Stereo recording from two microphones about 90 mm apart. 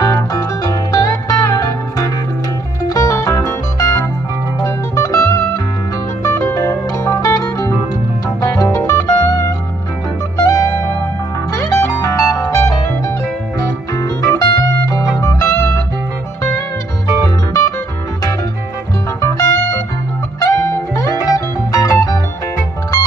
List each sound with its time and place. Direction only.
0.0 s music: 40° left (ahead or behind)
19.2 s music: 40° left (ahead or behind)